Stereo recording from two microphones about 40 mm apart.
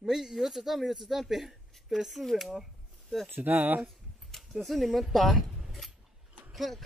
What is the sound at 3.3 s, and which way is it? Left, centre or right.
Speech, right.